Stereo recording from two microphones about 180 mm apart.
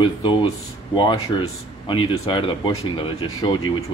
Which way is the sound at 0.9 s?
25° left (ahead or behind).